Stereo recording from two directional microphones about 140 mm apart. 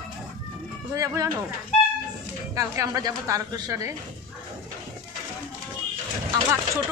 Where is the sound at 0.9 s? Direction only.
25° right (ahead or behind).